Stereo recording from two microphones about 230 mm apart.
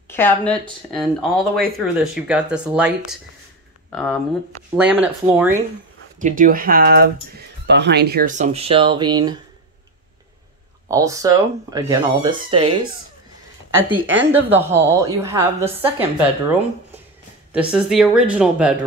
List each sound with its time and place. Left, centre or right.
0.1 s a woman's voice: centre
6.1 s speech: right; by 9.3 s centre
10.9 s a woman's voice: centre
14.3 s a woman's voice: centre